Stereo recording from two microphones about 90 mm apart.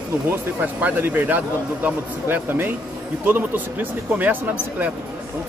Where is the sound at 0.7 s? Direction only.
20° right (ahead or behind).